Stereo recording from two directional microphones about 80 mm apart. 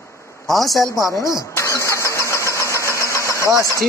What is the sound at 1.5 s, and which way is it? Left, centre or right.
Vehicle, left.